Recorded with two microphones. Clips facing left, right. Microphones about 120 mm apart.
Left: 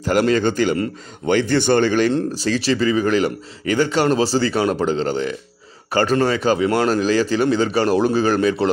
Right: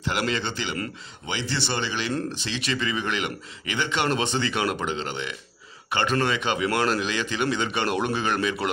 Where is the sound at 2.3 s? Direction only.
40° left (ahead or behind).